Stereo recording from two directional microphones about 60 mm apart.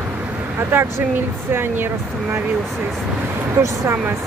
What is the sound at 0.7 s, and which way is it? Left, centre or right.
Speech, right.